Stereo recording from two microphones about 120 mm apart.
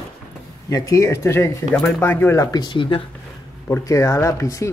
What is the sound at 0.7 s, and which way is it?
Speech, 30° left (ahead or behind).